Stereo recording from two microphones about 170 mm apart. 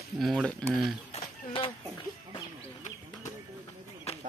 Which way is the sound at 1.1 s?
30° left (ahead or behind).